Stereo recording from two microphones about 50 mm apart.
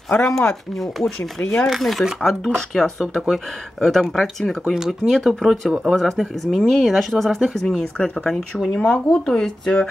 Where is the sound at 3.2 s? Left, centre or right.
Centre.